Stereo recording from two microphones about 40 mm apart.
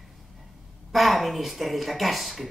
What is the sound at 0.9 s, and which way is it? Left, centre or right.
Speech, centre.